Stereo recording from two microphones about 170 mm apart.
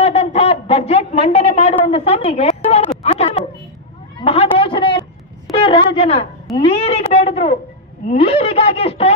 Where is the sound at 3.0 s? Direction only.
40° left (ahead or behind).